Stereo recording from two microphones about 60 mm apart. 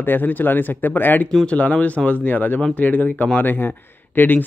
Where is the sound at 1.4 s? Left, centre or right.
Centre.